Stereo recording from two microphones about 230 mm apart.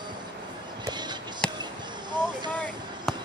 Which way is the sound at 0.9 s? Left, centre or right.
Centre.